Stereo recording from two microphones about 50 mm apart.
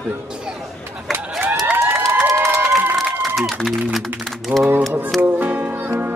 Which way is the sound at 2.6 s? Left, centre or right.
Centre.